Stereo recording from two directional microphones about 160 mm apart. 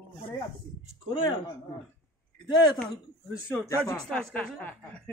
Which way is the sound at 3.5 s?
10° left (ahead or behind).